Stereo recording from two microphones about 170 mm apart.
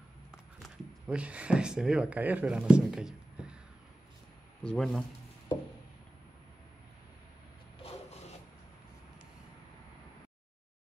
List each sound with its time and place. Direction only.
0.6 s speech: 5° right (ahead or behind)
4.6 s speech: 5° left (ahead or behind)